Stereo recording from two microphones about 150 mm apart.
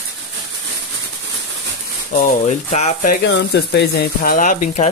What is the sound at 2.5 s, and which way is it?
Sizzle, 50° left (ahead or behind).